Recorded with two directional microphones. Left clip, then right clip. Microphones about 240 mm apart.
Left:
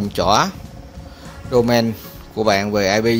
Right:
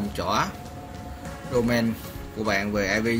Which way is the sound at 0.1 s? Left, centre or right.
Left.